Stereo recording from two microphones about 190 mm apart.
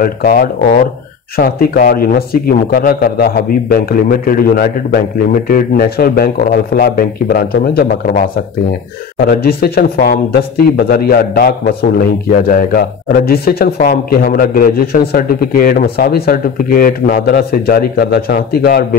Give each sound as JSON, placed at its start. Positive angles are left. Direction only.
{"t": 0.0, "sound": "a man's voice", "side_deg": 50}
{"t": 9.2, "sound": "a man's voice", "side_deg": 55}